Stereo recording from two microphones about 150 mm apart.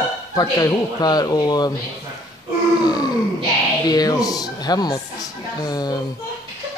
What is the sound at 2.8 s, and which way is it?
Grunt, 25° left (ahead or behind).